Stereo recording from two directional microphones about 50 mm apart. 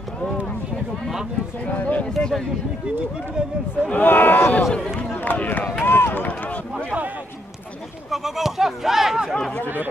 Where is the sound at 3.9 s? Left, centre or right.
Left.